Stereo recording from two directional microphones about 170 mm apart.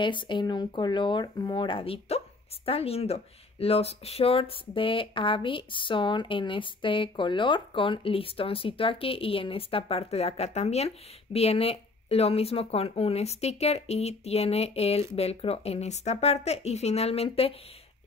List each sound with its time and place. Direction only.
0.0 s speech: 30° left (ahead or behind)